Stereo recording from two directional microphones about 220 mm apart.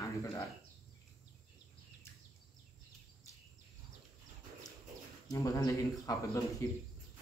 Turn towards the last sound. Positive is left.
turn(degrees=15)  # may be behind; listen again after turning